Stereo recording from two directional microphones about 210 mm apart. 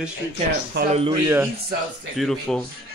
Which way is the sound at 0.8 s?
50° right (ahead or behind).